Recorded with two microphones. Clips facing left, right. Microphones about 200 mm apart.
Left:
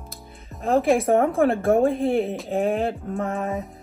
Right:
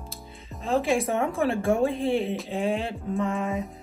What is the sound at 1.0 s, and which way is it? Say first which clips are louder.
A woman's voice: left 6 dB; 55° left (ahead or behind).